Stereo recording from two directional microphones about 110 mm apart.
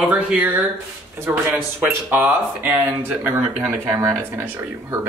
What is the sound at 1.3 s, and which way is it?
Speech, 15° right (ahead or behind).